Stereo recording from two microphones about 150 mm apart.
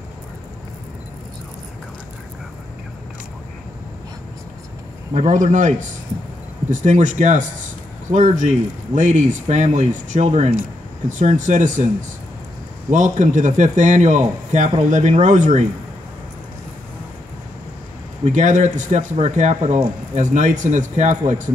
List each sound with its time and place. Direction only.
5.3 s speech: 55° right (ahead or behind)
12.9 s speech: 55° right (ahead or behind)
18.2 s speech: 55° right (ahead or behind)